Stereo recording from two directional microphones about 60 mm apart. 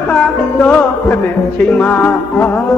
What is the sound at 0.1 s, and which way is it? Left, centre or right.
Music, left.